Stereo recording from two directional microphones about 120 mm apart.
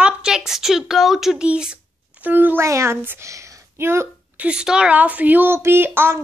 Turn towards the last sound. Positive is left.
turn(degrees=-20)  # may be behind; listen again after turning